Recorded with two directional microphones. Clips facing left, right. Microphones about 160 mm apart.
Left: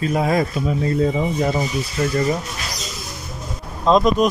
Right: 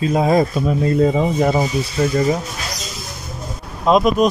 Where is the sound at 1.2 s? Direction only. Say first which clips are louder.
Right 4 dB; 55° right (ahead or behind).